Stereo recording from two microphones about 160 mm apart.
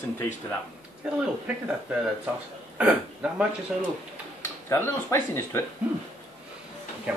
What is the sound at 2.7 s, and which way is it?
Speech, 10° right (ahead or behind).